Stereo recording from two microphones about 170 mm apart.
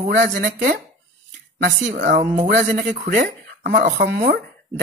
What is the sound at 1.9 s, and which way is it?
Speech, 50° right (ahead or behind).